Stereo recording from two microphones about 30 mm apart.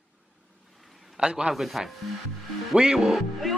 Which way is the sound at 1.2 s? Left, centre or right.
Right.